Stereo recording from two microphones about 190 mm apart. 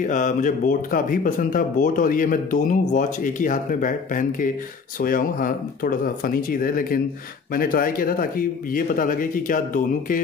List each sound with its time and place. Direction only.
0.0 s speech: 40° left (ahead or behind)